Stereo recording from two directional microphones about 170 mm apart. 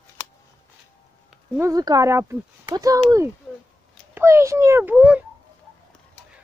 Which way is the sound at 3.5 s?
5° right (ahead or behind).